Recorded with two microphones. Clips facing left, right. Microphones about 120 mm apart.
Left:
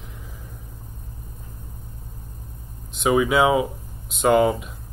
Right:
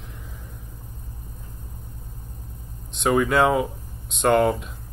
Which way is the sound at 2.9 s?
5° left (ahead or behind).